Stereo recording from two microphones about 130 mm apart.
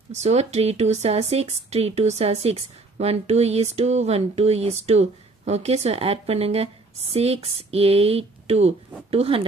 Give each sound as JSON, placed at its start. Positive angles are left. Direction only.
{"t": 0.1, "sound": "speech", "side_deg": -60}